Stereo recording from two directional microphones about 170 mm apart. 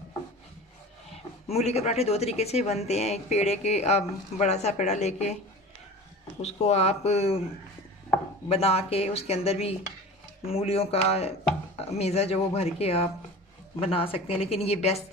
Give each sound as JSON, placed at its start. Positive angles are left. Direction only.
{"t": 1.1, "sound": "speech", "side_deg": 40}
{"t": 6.4, "sound": "speech", "side_deg": 40}
{"t": 8.5, "sound": "speech", "side_deg": 35}